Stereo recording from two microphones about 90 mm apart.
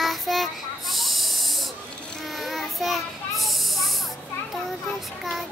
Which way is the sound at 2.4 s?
Centre (ahead or behind).